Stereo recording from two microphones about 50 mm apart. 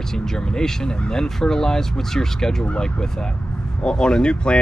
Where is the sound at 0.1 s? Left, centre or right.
Centre.